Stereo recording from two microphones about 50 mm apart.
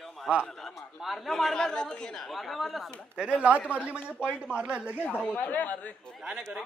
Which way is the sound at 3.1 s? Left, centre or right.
Right.